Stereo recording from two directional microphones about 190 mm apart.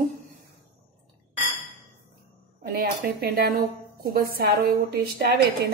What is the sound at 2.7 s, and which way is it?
Speech, 50° right (ahead or behind).